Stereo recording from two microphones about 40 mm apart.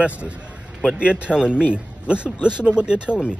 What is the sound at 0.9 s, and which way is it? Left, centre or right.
Speech, right.